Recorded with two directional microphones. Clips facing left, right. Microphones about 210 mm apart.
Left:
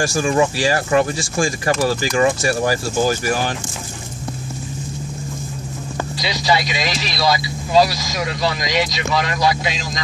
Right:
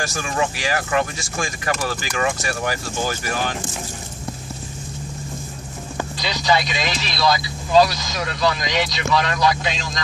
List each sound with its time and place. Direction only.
0.0 s speech: 30° left (ahead or behind)
6.1 s speech: 10° left (ahead or behind)